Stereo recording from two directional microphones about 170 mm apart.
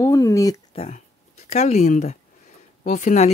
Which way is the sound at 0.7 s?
40° left (ahead or behind).